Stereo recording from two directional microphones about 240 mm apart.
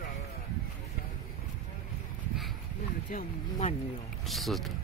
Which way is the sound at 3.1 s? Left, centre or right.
Left.